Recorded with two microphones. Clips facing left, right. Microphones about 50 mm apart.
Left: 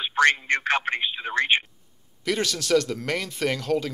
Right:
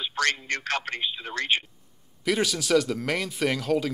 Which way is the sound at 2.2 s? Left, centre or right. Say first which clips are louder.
Right 1 dB; centre.